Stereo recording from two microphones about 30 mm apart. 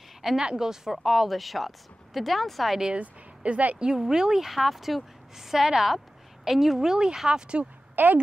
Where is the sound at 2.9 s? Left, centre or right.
Right.